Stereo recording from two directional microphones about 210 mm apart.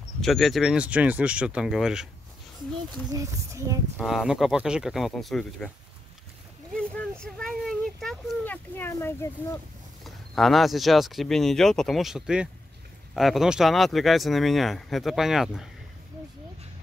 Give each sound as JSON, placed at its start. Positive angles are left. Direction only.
{"t": 0.2, "sound": "speech", "side_deg": 0}
{"t": 3.1, "sound": "speech", "side_deg": -15}
{"t": 4.0, "sound": "speech", "side_deg": 0}
{"t": 6.7, "sound": "a sound", "side_deg": 5}
{"t": 10.0, "sound": "speech", "side_deg": 0}